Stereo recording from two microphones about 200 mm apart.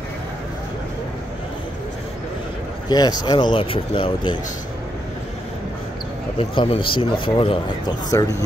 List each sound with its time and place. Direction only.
2.9 s speech: 20° left (ahead or behind)
6.3 s speech: 25° left (ahead or behind)